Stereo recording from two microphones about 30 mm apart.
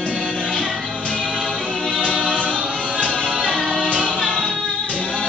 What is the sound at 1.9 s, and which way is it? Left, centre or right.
Choir, left.